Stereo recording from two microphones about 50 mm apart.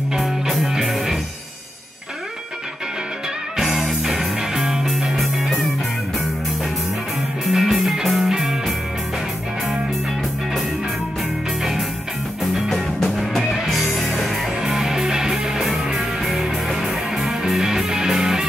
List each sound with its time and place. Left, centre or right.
0.1 s music: centre
3.5 s music: centre
7.4 s music: centre
12.5 s music: centre